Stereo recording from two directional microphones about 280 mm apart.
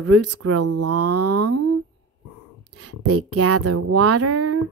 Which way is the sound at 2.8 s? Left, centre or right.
Right.